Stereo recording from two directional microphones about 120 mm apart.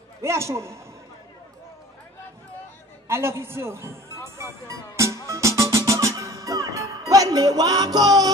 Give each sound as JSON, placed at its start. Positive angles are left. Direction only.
{"t": 0.2, "sound": "a man's voice", "side_deg": -25}
{"t": 3.1, "sound": "music", "side_deg": -20}